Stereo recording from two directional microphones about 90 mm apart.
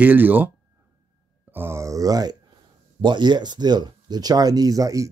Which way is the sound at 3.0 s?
55° right (ahead or behind).